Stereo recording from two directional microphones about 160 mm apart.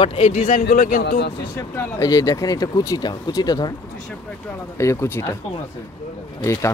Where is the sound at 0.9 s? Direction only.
90° left.